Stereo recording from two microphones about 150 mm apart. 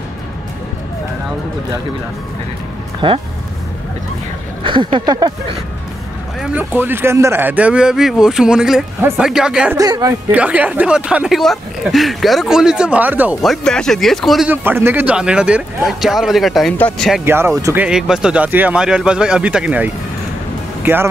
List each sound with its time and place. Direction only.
3.0 s speech: 35° right (ahead or behind)
4.6 s speech: 30° right (ahead or behind)
6.4 s speech: 10° right (ahead or behind)
9.8 s speech: 25° right (ahead or behind)
10.3 s speech: 10° right (ahead or behind)
13.4 s speech: 5° left (ahead or behind)
14.5 s speech: 15° right (ahead or behind)
16.7 s speech: 10° left (ahead or behind)
17.2 s speech: 15° right (ahead or behind)
17.8 s speech: 5° right (ahead or behind)